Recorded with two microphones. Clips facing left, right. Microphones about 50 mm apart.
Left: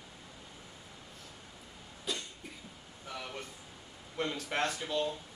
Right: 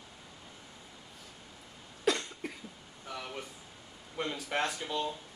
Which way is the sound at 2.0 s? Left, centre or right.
Right.